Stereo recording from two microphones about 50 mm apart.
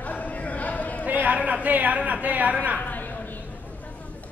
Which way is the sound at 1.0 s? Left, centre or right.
Right.